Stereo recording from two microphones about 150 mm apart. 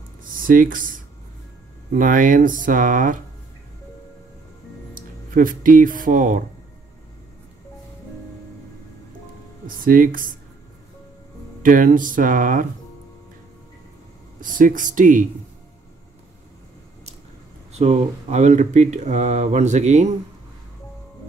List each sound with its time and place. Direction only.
0.2 s speech: 70° right (ahead or behind)
4.9 s speech: 65° right (ahead or behind)
9.7 s speech: 70° right (ahead or behind)
11.6 s speech: 65° right (ahead or behind)
14.4 s speech: 60° right (ahead or behind)
17.7 s speech: 45° right (ahead or behind)